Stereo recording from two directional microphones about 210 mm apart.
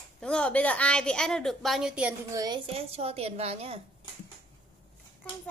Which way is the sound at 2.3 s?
20° right (ahead or behind).